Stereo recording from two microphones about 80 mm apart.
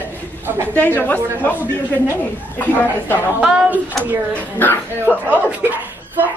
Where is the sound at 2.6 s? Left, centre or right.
Left.